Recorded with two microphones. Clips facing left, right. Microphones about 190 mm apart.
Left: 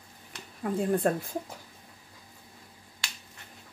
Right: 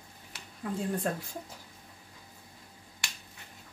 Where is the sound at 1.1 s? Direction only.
55° left (ahead or behind).